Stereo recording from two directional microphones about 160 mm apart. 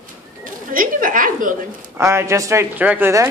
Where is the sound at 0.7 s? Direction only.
60° right (ahead or behind).